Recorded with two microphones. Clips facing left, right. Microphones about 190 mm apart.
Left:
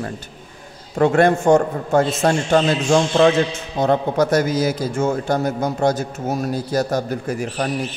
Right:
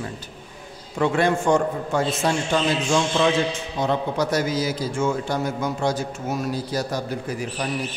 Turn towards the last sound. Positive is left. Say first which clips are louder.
# left 5 dB
turn(degrees=50)  # may be behind; listen again after turning